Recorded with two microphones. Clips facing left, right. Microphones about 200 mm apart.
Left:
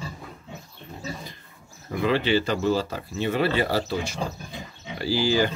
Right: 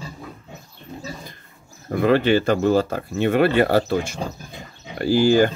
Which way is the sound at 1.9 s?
50° right (ahead or behind).